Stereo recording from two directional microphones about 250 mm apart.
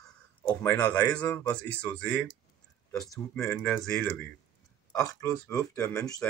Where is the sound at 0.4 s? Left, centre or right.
Centre.